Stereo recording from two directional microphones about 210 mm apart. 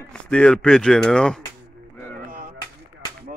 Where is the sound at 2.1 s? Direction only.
40° right (ahead or behind).